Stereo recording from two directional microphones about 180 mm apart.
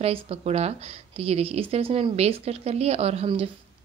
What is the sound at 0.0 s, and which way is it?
A woman's voice, 35° right (ahead or behind).